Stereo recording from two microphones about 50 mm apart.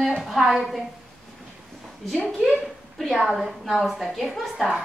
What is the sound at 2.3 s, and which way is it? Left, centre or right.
Speech, centre.